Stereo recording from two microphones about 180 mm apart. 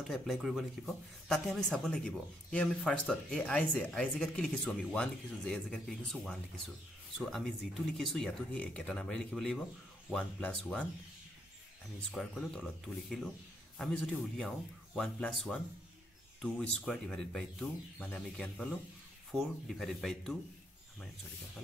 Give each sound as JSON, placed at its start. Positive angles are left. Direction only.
{"t": 0.1, "sound": "speech", "side_deg": 0}
{"t": 12.1, "sound": "speech", "side_deg": 0}